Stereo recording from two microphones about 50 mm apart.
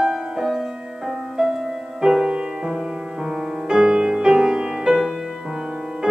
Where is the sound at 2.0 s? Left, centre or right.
Centre.